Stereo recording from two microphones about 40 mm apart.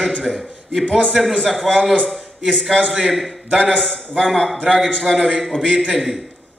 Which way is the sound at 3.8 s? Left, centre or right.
Centre.